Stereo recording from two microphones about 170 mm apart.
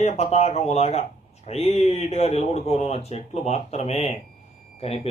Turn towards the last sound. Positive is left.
turn(degrees=35)  # may be behind; listen again after turning